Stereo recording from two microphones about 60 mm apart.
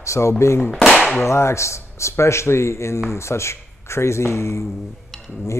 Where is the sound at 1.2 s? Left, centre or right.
Left.